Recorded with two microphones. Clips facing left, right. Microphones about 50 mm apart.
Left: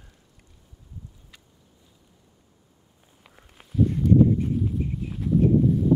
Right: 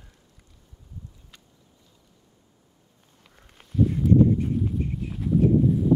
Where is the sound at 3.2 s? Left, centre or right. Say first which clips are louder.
Left 2 dB; centre.